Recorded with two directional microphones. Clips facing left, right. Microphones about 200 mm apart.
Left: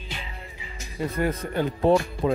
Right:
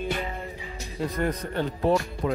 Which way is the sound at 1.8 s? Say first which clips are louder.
Left 4 dB; 25° left (ahead or behind).